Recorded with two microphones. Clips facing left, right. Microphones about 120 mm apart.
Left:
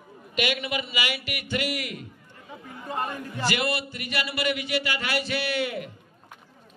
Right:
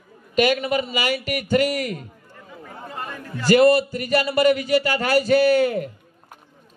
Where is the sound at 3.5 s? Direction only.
40° right (ahead or behind).